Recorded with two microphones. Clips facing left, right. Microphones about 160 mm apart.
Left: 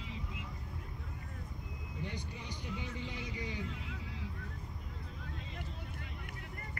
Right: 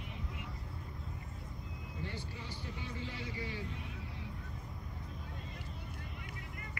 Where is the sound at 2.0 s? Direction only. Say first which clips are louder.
Left 1 dB; 20° left (ahead or behind).